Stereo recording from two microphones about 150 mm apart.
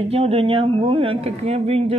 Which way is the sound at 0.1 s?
40° right (ahead or behind).